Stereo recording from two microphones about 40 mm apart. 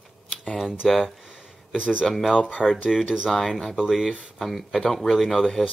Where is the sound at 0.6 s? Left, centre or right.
Centre.